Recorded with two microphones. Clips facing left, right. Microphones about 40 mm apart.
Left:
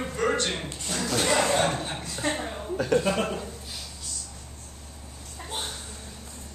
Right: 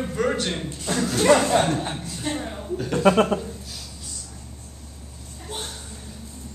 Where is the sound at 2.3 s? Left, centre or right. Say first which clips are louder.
Right 2 dB; centre.